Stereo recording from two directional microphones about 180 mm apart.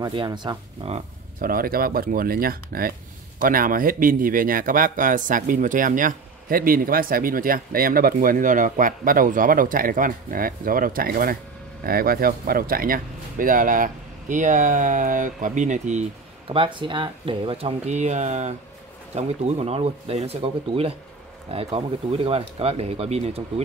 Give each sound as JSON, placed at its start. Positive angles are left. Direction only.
{"t": 0.0, "sound": "speech", "side_deg": -25}
{"t": 1.4, "sound": "speech", "side_deg": -55}
{"t": 16.4, "sound": "speech", "side_deg": -30}